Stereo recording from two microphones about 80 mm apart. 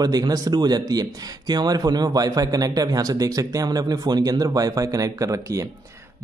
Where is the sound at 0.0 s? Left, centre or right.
Right.